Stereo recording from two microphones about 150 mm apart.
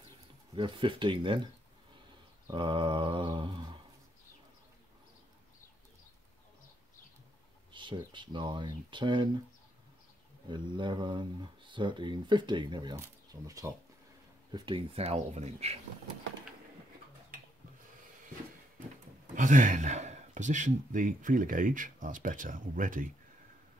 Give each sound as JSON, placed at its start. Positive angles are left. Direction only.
{"t": 0.6, "sound": "speech", "side_deg": -35}
{"t": 2.5, "sound": "speech", "side_deg": -30}
{"t": 7.7, "sound": "speech", "side_deg": -35}
{"t": 10.5, "sound": "speech", "side_deg": -30}
{"t": 12.9, "sound": "speech", "side_deg": -20}
{"t": 15.0, "sound": "speech", "side_deg": -45}
{"t": 19.3, "sound": "speech", "side_deg": -60}